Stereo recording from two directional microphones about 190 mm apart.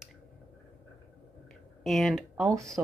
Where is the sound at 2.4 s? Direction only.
15° right (ahead or behind).